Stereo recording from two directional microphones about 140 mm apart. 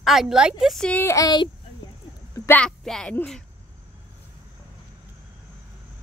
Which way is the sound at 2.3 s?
20° left (ahead or behind).